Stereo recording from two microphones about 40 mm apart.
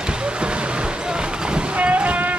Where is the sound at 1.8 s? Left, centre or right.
Right.